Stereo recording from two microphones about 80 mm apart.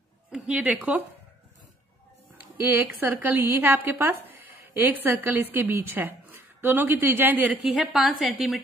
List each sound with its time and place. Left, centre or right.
0.7 s speech: centre
2.3 s a woman's voice: right
7.8 s a woman's voice: centre